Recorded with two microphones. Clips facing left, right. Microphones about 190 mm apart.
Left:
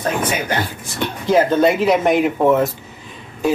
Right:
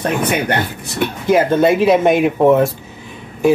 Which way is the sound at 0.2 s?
60° right (ahead or behind).